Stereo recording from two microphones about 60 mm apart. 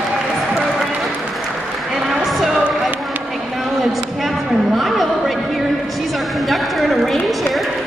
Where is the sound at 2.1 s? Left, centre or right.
Centre.